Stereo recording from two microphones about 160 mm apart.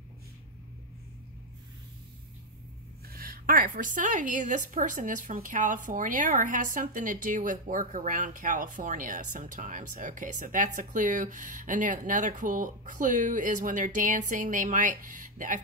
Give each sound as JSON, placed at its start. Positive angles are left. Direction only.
{"t": 3.1, "sound": "a woman's voice", "side_deg": -65}